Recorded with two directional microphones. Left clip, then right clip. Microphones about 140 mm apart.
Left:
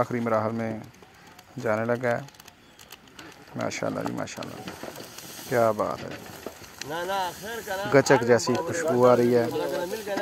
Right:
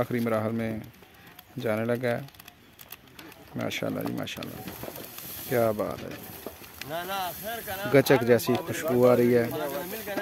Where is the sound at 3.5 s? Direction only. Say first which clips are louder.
Left 2 dB; 30° right (ahead or behind).